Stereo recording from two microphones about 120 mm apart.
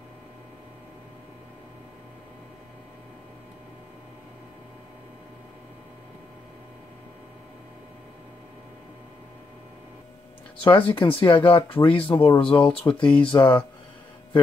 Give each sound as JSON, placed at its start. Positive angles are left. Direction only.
{"t": 10.6, "sound": "speech", "side_deg": 45}
{"t": 12.5, "sound": "speech", "side_deg": 10}
{"t": 12.9, "sound": "speech", "side_deg": 45}